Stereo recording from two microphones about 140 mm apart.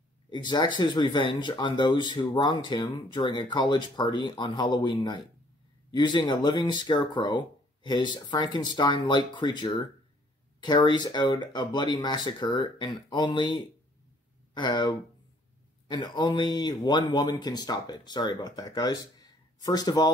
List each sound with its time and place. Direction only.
0.3 s speech: 30° left (ahead or behind)